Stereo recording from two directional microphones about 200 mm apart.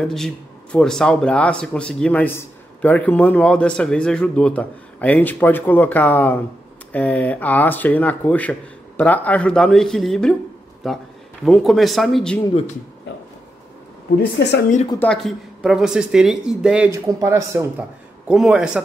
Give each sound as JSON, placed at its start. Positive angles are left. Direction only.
{"t": 0.0, "sound": "speech", "side_deg": 0}
{"t": 14.1, "sound": "a woman's voice", "side_deg": 55}
{"t": 14.9, "sound": "speech", "side_deg": 5}